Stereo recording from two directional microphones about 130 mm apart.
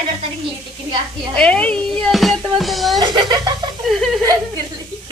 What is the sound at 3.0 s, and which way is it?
Speech, 35° right (ahead or behind).